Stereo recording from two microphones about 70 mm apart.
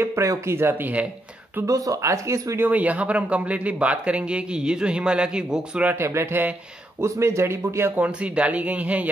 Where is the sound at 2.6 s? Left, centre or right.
Right.